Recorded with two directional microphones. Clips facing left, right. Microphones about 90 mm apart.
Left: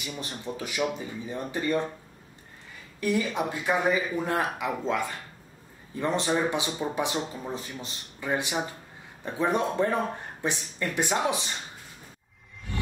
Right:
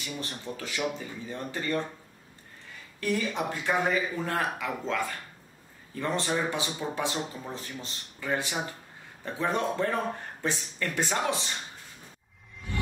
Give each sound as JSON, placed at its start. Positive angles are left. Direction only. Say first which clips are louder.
{"t": 0.0, "sound": "speech", "louder": "left 1 dB", "side_deg": 15}
{"t": 3.0, "sound": "speech", "louder": "left 2 dB", "side_deg": 10}